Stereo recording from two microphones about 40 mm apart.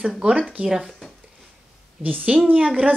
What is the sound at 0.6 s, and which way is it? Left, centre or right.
Child singing, centre.